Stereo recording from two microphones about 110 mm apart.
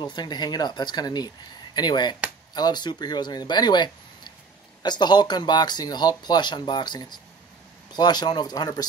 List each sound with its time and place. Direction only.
0.0 s speech: 40° left (ahead or behind)